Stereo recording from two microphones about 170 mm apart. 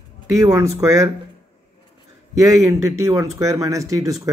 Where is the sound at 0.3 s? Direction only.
20° right (ahead or behind).